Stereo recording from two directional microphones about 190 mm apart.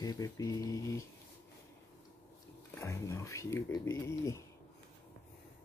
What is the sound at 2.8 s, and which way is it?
Speech, 15° left (ahead or behind).